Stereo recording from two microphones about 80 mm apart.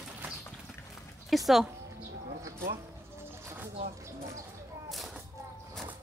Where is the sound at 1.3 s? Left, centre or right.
Centre.